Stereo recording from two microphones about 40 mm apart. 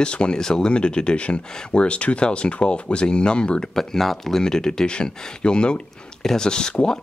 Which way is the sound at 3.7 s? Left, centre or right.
Centre.